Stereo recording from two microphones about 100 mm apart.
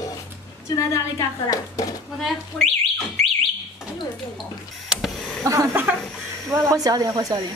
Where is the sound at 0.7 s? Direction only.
35° left (ahead or behind).